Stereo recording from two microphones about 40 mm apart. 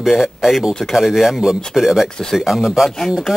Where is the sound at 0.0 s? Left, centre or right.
Centre.